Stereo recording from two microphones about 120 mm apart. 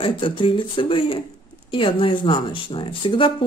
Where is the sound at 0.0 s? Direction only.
45° left (ahead or behind).